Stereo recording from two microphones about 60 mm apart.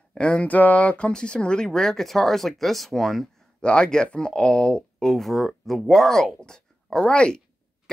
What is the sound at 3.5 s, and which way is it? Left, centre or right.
Speech, centre.